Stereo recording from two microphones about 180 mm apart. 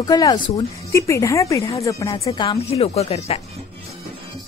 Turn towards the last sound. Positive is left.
turn(degrees=35)  # may be behind; listen again after turning